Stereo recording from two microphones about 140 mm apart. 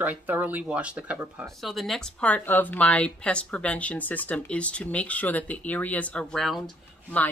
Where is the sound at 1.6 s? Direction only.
Centre (ahead or behind).